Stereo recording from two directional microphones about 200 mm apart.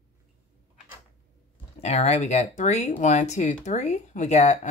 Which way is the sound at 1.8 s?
35° left (ahead or behind).